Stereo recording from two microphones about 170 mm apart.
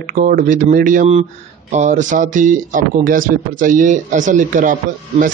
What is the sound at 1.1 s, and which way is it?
Speech, 40° right (ahead or behind).